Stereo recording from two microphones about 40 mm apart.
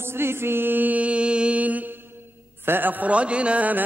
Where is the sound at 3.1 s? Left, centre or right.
Right.